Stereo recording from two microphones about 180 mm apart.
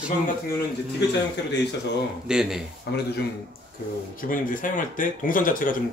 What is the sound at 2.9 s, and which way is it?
Speech, 70° left (ahead or behind).